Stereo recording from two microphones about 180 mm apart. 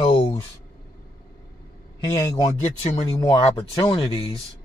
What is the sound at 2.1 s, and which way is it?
Speech, 20° left (ahead or behind).